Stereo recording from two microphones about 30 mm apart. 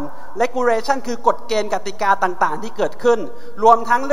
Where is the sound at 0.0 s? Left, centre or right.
Centre.